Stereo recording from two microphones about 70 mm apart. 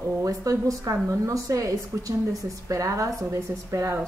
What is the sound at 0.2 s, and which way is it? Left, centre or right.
A woman's voice, right.